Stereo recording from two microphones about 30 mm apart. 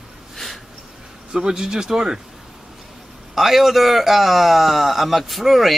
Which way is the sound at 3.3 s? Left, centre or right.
Centre.